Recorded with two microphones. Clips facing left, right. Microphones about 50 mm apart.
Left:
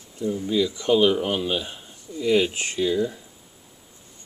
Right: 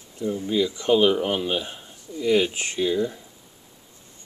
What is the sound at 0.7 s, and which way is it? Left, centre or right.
Speech, centre.